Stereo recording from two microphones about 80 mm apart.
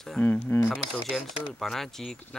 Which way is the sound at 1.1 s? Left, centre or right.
Centre.